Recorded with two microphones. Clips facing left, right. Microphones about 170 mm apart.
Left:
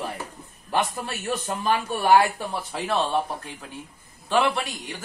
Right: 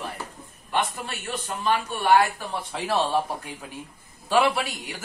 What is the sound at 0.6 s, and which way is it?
A man's voice, 40° left (ahead or behind).